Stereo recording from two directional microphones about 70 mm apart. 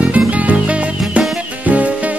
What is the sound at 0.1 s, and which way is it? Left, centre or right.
Music, right.